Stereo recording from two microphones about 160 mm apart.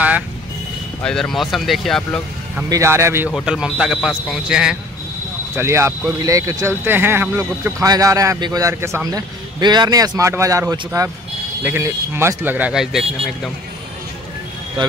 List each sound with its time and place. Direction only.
1.0 s speech: 5° left (ahead or behind)
2.7 s speech: 20° right (ahead or behind)
3.3 s speech: 5° right (ahead or behind)
5.6 s speech: 15° right (ahead or behind); by 13.5 s centre (ahead or behind)